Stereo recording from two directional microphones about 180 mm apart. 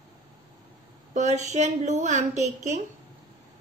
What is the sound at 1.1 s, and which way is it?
A woman's voice, 40° right (ahead or behind).